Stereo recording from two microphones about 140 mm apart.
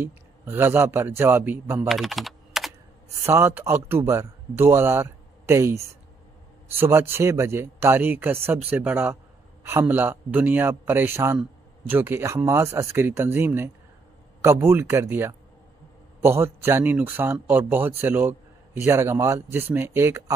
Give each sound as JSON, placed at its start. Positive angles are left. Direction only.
{"t": 0.0, "sound": "a man's voice", "side_deg": -15}
{"t": 1.9, "sound": "typing", "side_deg": 0}
{"t": 3.3, "sound": "a man's voice", "side_deg": -20}